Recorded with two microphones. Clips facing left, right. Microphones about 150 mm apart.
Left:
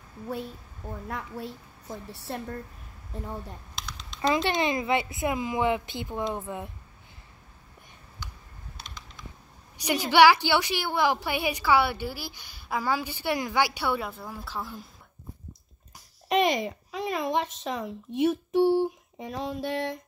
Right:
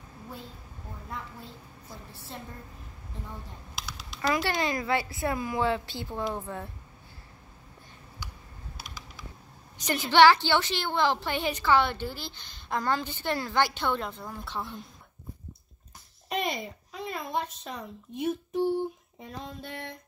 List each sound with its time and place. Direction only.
1.0 s a woman's voice: 70° left (ahead or behind)
3.7 s typing: 5° right (ahead or behind)
4.2 s a woman's voice: 20° left (ahead or behind)
8.7 s typing: 5° right (ahead or behind)
9.8 s a woman's voice: 10° left (ahead or behind)
16.3 s speech: 90° left